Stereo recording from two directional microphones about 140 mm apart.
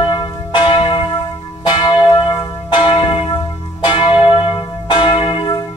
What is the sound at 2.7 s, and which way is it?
Church bell, 35° left (ahead or behind).